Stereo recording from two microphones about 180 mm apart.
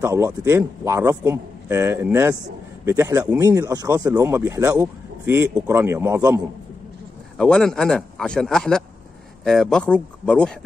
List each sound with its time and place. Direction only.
0.0 s speech: 15° right (ahead or behind)
7.3 s speech: 5° left (ahead or behind)